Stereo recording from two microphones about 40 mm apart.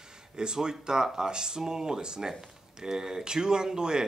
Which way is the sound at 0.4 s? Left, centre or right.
Centre.